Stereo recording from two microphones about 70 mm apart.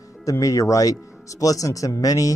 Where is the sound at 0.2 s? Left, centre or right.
Left.